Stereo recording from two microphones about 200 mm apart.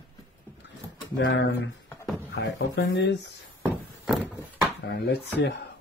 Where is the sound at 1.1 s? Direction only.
65° left (ahead or behind).